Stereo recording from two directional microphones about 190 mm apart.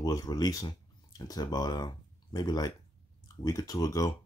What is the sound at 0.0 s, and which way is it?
Speech, 20° left (ahead or behind).